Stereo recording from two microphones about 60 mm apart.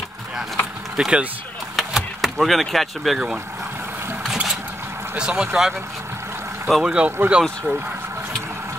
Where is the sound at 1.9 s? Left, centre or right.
Centre.